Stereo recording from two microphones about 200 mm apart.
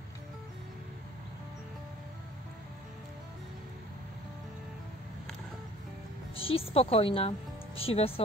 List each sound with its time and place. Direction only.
6.4 s speech: 30° left (ahead or behind)